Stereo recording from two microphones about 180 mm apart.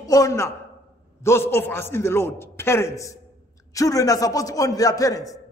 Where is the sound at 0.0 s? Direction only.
20° left (ahead or behind).